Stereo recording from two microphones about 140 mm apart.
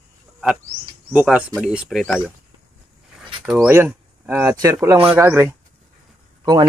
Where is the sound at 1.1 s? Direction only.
10° right (ahead or behind).